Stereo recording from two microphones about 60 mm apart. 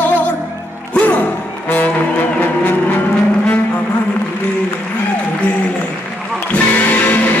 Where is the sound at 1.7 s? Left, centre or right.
Left.